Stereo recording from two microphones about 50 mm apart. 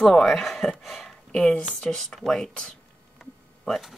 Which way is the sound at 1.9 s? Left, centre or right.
Centre.